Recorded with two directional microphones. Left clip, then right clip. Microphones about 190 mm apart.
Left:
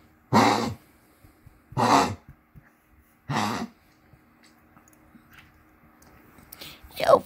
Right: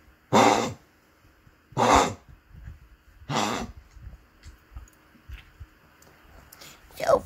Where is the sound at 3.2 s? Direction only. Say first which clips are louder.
Right 1 dB; 10° right (ahead or behind).